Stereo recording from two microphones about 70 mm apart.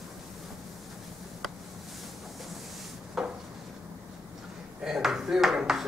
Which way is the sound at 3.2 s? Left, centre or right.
Centre.